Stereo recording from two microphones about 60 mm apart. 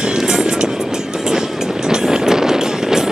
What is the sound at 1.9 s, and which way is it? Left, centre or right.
Vehicle, centre.